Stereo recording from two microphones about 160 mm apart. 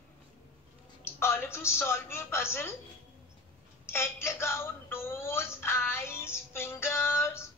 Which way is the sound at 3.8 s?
15° left (ahead or behind).